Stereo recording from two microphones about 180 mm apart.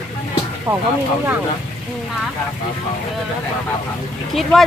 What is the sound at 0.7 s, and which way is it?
Speech, 20° right (ahead or behind).